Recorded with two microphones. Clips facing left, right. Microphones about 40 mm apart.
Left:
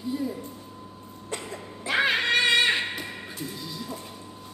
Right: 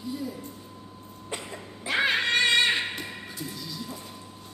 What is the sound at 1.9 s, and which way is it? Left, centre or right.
Music, centre.